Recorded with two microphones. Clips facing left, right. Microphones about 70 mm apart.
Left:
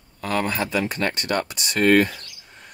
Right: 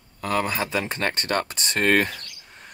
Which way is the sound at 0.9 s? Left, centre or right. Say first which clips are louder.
Left 1 dB; right.